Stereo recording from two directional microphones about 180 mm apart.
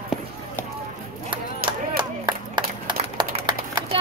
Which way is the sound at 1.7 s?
25° right (ahead or behind).